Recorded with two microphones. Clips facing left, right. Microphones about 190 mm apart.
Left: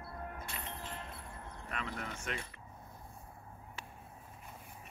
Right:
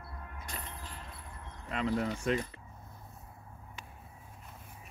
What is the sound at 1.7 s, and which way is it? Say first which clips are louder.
Speech: right 11 dB; 30° right (ahead or behind).